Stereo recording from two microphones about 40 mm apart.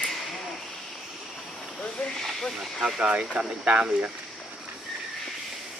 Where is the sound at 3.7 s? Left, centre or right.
Right.